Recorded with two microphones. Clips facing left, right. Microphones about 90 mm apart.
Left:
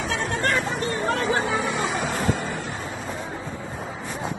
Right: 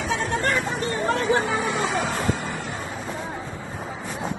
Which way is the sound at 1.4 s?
20° left (ahead or behind).